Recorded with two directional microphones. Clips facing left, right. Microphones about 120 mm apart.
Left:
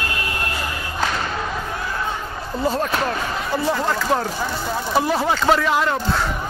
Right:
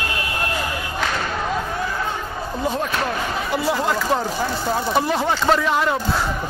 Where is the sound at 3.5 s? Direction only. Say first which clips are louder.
Even; 10° right (ahead or behind).